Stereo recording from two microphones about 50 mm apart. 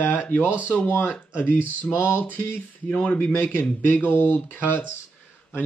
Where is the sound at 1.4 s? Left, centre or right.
Left.